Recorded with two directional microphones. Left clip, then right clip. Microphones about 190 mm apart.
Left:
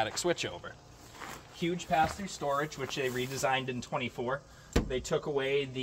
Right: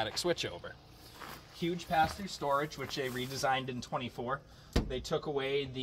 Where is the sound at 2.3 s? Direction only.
20° left (ahead or behind).